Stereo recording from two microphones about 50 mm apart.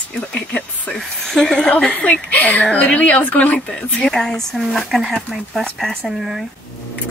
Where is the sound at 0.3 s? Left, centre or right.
Left.